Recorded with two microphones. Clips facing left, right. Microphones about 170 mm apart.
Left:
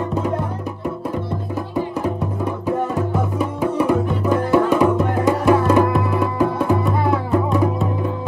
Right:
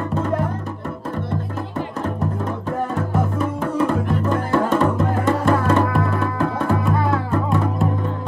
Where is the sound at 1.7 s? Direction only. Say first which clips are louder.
Left 3 dB; 15° left (ahead or behind).